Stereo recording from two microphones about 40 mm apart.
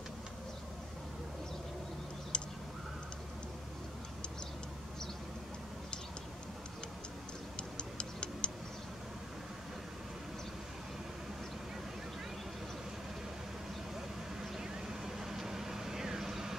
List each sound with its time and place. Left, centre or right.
2.3 s a sound: left
7.5 s clock: left
14.6 s vehicle: centre